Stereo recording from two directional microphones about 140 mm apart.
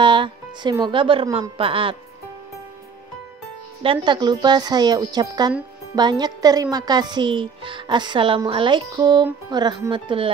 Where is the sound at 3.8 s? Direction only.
35° right (ahead or behind).